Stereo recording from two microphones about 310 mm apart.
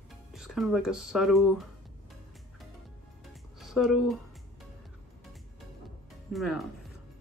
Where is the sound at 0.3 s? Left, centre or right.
Centre.